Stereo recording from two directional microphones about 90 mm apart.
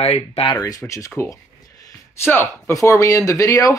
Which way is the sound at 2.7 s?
35° left (ahead or behind).